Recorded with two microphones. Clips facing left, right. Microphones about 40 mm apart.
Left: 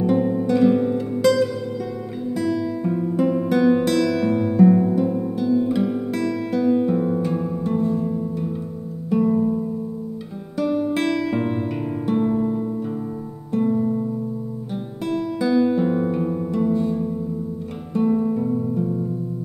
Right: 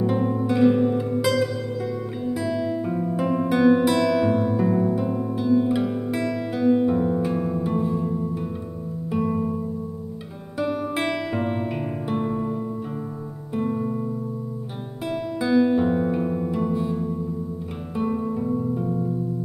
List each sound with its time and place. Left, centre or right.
0.0 s music: centre
2.3 s guitar: centre
3.1 s music: centre
10.6 s guitar: centre
11.1 s music: centre
13.5 s music: centre
15.0 s music: centre